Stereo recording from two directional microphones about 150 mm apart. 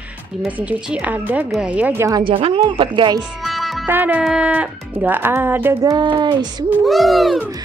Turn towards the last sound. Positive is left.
turn(degrees=0)  # may be behind; listen again after turning